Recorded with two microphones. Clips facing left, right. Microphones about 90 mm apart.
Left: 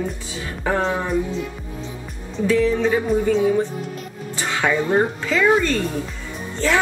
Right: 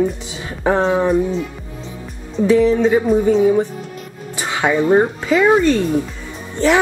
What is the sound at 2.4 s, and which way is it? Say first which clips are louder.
A woman's voice: right 5 dB; 20° right (ahead or behind).